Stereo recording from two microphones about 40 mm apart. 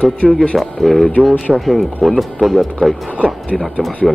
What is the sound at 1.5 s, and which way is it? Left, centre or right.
Speech, centre.